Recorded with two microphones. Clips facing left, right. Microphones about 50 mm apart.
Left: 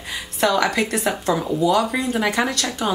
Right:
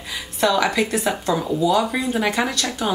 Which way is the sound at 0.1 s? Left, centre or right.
Left.